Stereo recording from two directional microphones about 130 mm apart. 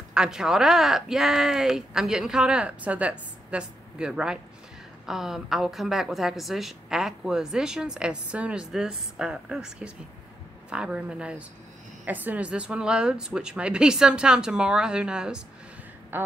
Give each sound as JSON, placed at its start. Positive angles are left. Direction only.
{"t": 0.1, "sound": "a woman's voice", "side_deg": -5}